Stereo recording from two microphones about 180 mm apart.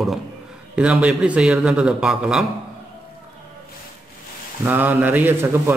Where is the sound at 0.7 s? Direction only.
5° right (ahead or behind).